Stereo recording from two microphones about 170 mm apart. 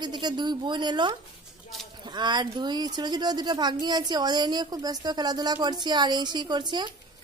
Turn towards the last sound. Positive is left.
turn(degrees=-25)  # may be behind; listen again after turning